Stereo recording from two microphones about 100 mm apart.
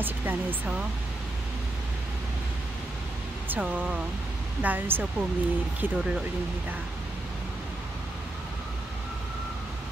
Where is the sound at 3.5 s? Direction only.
15° right (ahead or behind).